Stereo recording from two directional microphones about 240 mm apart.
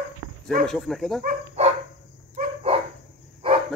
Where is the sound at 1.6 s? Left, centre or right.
Right.